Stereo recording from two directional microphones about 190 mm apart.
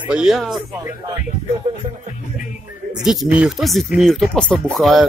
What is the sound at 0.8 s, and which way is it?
Speech, 15° right (ahead or behind).